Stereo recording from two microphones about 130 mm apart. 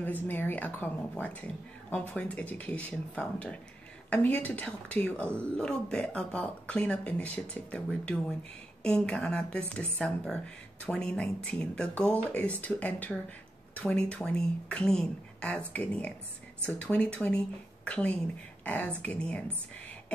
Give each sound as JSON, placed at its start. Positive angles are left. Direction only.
{"t": 0.0, "sound": "speech", "side_deg": 15}